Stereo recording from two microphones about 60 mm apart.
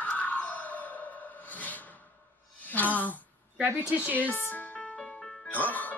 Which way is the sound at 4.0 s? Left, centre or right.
Right.